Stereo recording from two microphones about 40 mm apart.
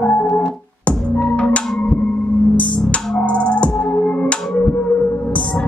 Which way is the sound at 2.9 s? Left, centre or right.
Left.